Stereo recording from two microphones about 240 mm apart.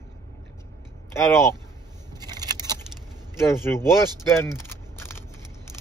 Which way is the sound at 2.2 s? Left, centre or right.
Centre.